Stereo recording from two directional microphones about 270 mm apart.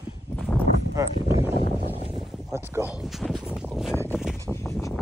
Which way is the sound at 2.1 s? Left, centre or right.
Centre.